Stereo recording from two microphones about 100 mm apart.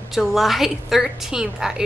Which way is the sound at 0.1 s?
Centre (ahead or behind).